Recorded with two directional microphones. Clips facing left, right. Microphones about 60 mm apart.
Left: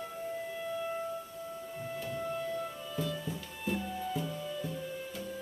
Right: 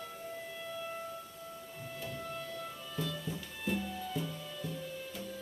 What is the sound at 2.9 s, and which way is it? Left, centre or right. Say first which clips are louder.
Music: left 1 dB; centre.